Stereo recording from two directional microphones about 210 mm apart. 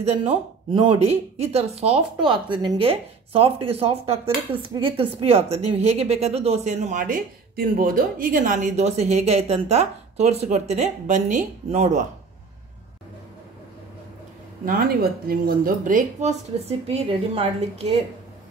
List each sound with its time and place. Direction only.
0.0 s speech: 25° right (ahead or behind)
14.6 s speech: 45° right (ahead or behind)